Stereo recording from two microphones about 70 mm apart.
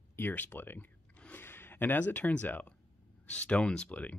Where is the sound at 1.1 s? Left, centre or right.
Centre.